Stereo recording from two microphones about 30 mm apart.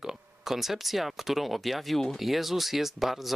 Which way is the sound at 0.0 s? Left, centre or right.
Centre.